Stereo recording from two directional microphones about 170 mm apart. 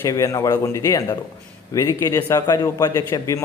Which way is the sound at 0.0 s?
20° left (ahead or behind).